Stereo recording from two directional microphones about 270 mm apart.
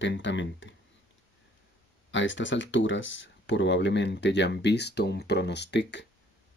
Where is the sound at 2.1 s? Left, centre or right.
Left.